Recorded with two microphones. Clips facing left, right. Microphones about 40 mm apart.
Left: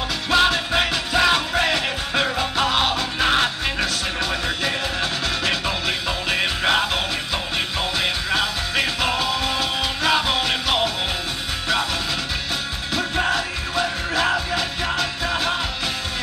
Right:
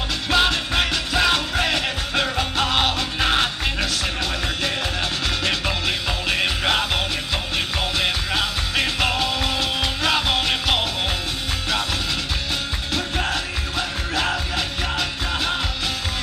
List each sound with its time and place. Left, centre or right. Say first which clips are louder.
0.3 s music: left 2 dB; centre
3.8 s music: left 1 dB; centre
12.9 s music: left 3 dB; centre